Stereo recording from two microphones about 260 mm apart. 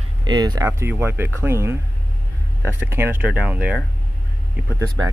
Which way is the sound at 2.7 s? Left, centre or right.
Centre.